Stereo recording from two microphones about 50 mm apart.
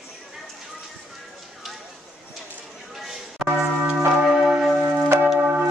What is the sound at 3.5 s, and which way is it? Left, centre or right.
Church bell, right.